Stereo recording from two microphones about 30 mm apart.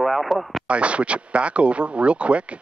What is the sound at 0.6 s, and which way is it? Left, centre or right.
Speech, right.